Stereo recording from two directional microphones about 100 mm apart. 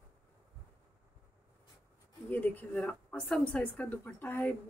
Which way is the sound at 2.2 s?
15° left (ahead or behind).